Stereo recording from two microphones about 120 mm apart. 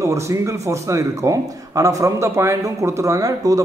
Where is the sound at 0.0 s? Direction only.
25° right (ahead or behind).